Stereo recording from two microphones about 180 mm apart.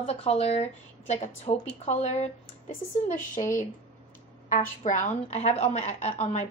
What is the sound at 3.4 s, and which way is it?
A woman's voice, 30° left (ahead or behind).